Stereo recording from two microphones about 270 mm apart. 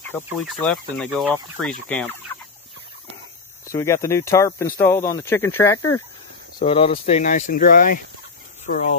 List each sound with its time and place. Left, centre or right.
0.1 s speech: centre
3.6 s speech: centre
6.6 s speech: left